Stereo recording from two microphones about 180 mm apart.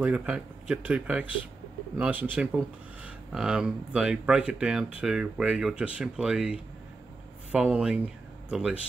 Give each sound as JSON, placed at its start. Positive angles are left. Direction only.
{"t": 0.0, "sound": "speech", "side_deg": -5}